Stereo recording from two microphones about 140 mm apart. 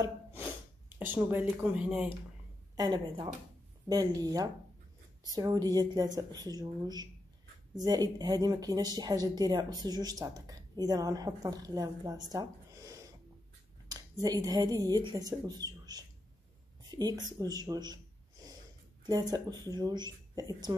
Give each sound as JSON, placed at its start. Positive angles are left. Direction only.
{"t": 0.3, "sound": "snort", "side_deg": -15}
{"t": 2.7, "sound": "a woman's voice", "side_deg": -30}